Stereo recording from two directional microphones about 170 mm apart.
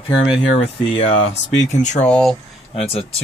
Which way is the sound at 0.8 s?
35° left (ahead or behind).